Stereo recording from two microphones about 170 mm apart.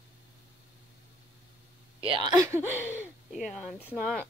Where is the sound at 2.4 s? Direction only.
15° right (ahead or behind).